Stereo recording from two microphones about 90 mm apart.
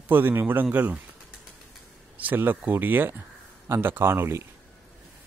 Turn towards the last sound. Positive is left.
turn(degrees=-25)  # may be behind; listen again after turning